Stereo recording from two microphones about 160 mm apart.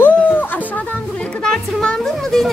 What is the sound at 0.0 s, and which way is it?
Music, 10° left (ahead or behind).